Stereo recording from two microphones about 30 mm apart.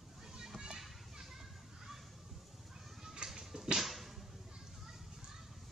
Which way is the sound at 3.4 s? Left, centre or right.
Centre.